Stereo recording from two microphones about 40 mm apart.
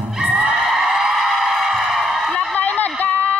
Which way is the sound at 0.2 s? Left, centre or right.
Right.